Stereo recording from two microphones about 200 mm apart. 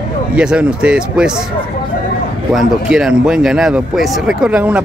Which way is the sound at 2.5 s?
5° right (ahead or behind).